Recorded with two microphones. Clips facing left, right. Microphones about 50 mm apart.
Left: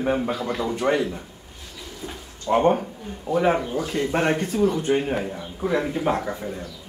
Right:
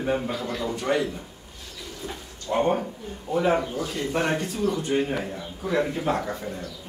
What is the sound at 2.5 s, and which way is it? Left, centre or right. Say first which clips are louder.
Speech: left 4 dB; left.